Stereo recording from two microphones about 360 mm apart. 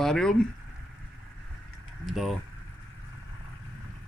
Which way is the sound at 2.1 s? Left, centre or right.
Centre.